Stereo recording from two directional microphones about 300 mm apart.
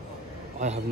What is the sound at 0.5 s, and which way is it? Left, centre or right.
Speech, right.